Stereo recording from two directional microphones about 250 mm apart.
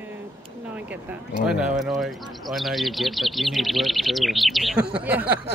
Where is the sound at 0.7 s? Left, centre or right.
Centre.